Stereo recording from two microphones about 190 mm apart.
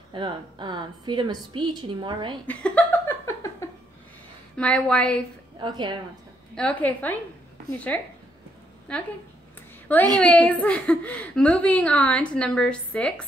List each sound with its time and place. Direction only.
0.1 s a woman's voice: 25° right (ahead or behind)
2.4 s a sound: 5° left (ahead or behind)
4.6 s a woman's voice: 5° left (ahead or behind)
5.6 s a woman's voice: 25° right (ahead or behind)
6.5 s a woman's voice: 5° left (ahead or behind)
10.1 s a woman's voice: 5° left (ahead or behind)